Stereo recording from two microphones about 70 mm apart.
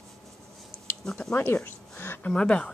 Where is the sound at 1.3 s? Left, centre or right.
Left.